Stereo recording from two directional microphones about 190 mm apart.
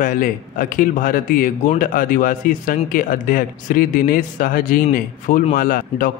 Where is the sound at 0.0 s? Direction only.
45° left (ahead or behind).